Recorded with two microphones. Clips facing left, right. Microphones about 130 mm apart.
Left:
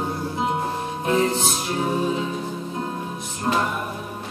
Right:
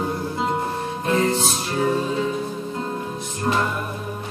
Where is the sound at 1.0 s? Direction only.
15° left (ahead or behind).